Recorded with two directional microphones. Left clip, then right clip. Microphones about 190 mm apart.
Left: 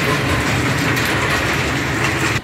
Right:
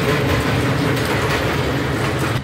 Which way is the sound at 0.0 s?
35° right (ahead or behind).